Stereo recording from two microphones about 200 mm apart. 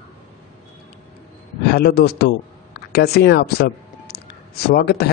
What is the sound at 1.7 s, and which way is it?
Speech, 50° left (ahead or behind).